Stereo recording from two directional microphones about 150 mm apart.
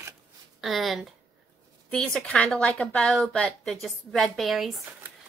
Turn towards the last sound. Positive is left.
turn(degrees=0)  # may be behind; listen again after turning